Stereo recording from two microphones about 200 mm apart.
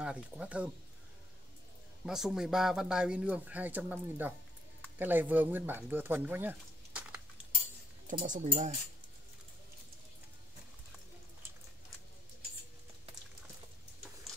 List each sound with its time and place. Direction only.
0.0 s speech: 5° right (ahead or behind)
2.0 s speech: centre (ahead or behind)
8.1 s speech: 40° right (ahead or behind)